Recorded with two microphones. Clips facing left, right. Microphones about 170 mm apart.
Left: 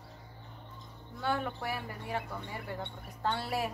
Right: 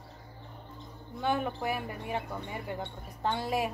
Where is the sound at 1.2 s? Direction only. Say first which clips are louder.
Right 3 dB; 20° right (ahead or behind).